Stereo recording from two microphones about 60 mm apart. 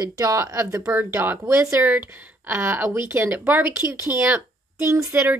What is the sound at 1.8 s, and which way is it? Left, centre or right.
Speech, right.